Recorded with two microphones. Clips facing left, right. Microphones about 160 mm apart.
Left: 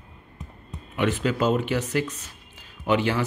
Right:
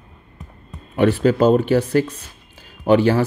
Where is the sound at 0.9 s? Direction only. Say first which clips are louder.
Right 8 dB; 35° right (ahead or behind).